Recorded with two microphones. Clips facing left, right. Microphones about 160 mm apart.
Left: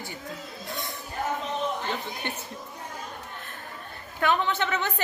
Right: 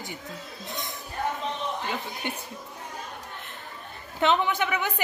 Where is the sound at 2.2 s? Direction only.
15° right (ahead or behind).